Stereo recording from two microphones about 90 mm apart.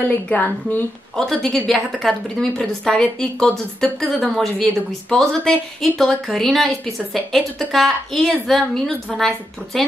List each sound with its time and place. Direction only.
0.3 s a woman's voice: 20° left (ahead or behind)
1.1 s a woman's voice: 5° left (ahead or behind)